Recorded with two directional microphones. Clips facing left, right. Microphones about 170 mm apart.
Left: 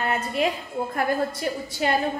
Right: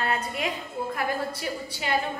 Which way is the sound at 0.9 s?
45° left (ahead or behind).